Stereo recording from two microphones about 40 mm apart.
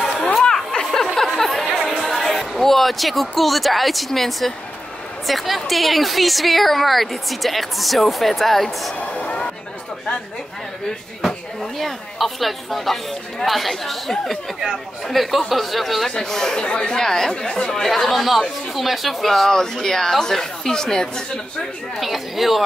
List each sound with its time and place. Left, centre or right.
0.0 s a sound: centre
1.0 s chatter: centre
5.2 s a woman's voice: centre
11.2 s a woman's voice: centre
16.1 s speech: centre
16.6 s speech: left
17.0 s speech: centre
17.8 s a woman's voice: centre
19.5 s speech: centre
21.9 s a woman's voice: centre